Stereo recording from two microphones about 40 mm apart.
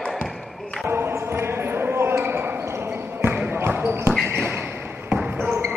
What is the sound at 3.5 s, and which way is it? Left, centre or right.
Basketball bounce, right.